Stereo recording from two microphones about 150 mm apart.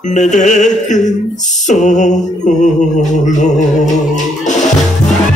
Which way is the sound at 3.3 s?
55° left (ahead or behind).